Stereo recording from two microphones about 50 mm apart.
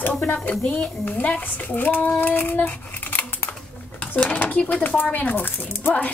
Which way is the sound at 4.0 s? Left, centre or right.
Left.